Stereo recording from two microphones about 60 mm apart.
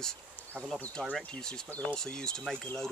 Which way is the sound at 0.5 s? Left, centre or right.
Right.